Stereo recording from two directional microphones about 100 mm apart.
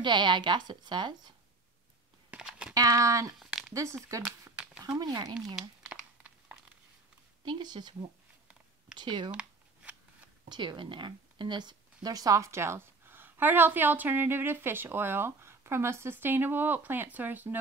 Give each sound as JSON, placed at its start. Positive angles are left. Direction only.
{"t": 0.0, "sound": "a woman's voice", "side_deg": -50}
{"t": 2.3, "sound": "a sound", "side_deg": -10}
{"t": 2.7, "sound": "speech", "side_deg": -35}
{"t": 3.3, "sound": "a sound", "side_deg": 0}
{"t": 3.7, "sound": "speech", "side_deg": -30}
{"t": 5.9, "sound": "crumpling", "side_deg": -5}
{"t": 7.4, "sound": "a woman's voice", "side_deg": -50}
{"t": 9.3, "sound": "shuffling cards", "side_deg": -10}
{"t": 10.5, "sound": "speech", "side_deg": -50}